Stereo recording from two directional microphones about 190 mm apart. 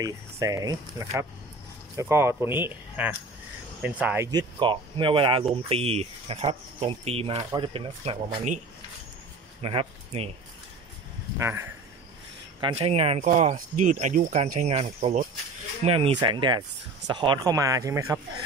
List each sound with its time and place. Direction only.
0.0 s speech: 20° right (ahead or behind)
4.3 s speech: 25° right (ahead or behind)
9.6 s speech: 30° right (ahead or behind)
11.3 s speech: 15° right (ahead or behind)
12.5 s speech: 30° right (ahead or behind)